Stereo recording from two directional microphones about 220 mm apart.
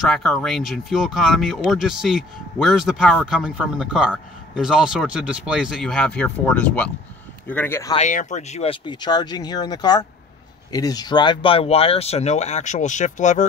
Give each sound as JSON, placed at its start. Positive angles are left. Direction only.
{"t": 0.0, "sound": "speech", "side_deg": 0}
{"t": 7.9, "sound": "speech", "side_deg": 35}